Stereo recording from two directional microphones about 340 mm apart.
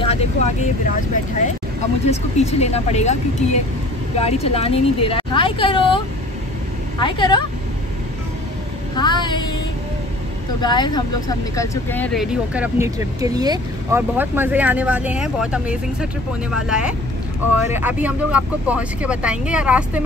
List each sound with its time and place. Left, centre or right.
0.0 s speech: centre
4.5 s speech: centre
8.9 s speech: centre
10.6 s speech: centre